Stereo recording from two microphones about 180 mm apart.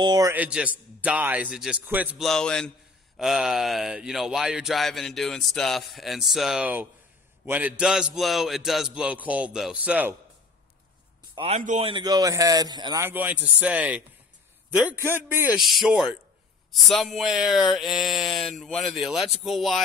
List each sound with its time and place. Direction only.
0.0 s speech: 25° right (ahead or behind)
0.3 s speech: 5° right (ahead or behind)
11.3 s speech: 35° right (ahead or behind)
11.9 s a man's voice: 20° right (ahead or behind)
15.5 s speech: centre (ahead or behind)